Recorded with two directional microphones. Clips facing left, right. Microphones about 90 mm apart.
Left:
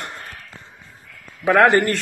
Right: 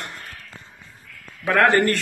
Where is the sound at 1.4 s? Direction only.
15° left (ahead or behind).